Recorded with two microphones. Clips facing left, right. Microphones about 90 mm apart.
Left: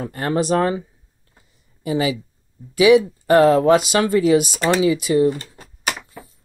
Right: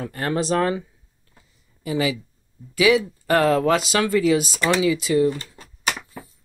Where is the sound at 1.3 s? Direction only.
25° left (ahead or behind).